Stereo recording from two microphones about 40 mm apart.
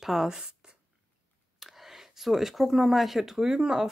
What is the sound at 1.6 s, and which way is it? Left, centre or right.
Speech, centre.